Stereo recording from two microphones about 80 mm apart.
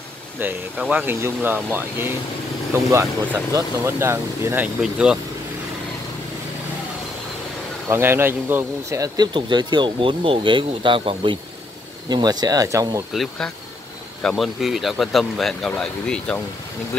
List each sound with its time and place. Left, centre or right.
0.4 s speech: right
4.6 s speech: centre
7.9 s speech: right
8.8 s speech: right
9.3 s speech: right
12.1 s speech: right
13.1 s speech: centre